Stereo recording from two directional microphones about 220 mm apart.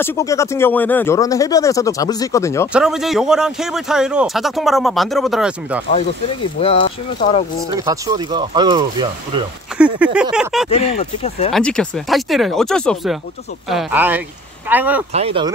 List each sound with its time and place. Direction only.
0.0 s speech: 10° left (ahead or behind)
2.7 s speech: centre (ahead or behind)
5.9 s speech: 25° left (ahead or behind)
7.7 s speech: 15° right (ahead or behind)
9.8 s speech: 5° right (ahead or behind)
11.2 s speech: 30° left (ahead or behind)
11.5 s speech: 5° left (ahead or behind)
15.1 s speech: 25° right (ahead or behind)